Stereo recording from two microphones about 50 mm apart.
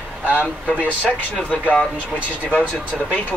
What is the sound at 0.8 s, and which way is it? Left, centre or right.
Speech, left.